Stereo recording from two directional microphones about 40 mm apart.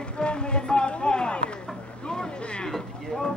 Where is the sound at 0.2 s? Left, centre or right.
Left.